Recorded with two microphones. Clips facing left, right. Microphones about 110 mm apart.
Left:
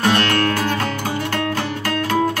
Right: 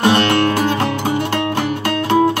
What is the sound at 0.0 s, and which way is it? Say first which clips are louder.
Music: right 4 dB; 20° right (ahead or behind).